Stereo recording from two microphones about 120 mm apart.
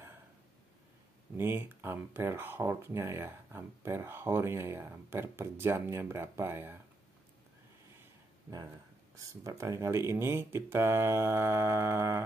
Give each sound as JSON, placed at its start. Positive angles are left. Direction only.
{"t": 1.3, "sound": "speech", "side_deg": -20}
{"t": 9.1, "sound": "speech", "side_deg": -25}